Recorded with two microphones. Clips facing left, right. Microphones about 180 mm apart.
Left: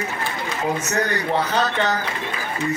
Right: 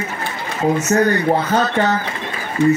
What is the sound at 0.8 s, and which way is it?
Speech, 40° right (ahead or behind).